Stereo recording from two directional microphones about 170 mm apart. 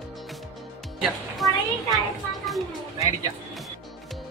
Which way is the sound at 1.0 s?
Centre (ahead or behind).